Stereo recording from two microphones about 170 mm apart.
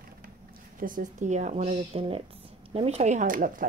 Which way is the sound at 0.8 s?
50° right (ahead or behind).